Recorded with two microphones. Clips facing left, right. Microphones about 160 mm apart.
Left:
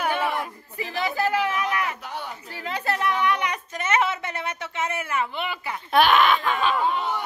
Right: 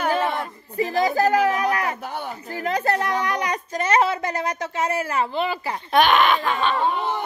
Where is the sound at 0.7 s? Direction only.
40° right (ahead or behind).